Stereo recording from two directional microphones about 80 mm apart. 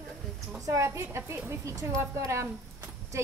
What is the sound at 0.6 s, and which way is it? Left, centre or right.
A woman's voice, right.